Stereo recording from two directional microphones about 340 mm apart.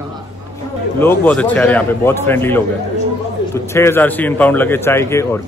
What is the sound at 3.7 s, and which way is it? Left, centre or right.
A man's voice, centre.